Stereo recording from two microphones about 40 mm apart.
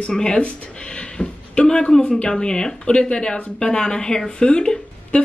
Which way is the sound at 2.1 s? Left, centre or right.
Left.